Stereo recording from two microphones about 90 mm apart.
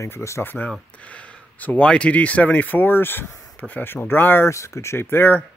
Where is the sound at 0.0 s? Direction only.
35° left (ahead or behind).